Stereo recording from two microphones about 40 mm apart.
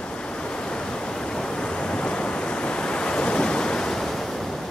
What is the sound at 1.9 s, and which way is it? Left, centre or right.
Waves, left.